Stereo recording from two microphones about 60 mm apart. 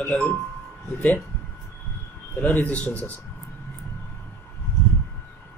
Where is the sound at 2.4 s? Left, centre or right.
Left.